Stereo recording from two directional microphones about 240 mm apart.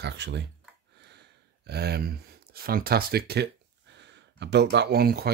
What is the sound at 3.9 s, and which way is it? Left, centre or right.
Speech, right.